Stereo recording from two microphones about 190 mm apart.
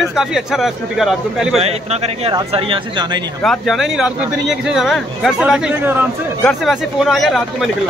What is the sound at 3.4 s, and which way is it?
Speech, centre (ahead or behind).